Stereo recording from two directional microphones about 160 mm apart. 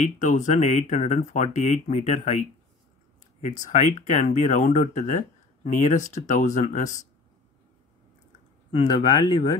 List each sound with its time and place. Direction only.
0.0 s speech: 50° left (ahead or behind)
8.8 s speech: 25° left (ahead or behind)